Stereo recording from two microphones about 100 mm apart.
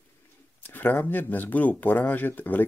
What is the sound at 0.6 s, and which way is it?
Speech, 20° left (ahead or behind).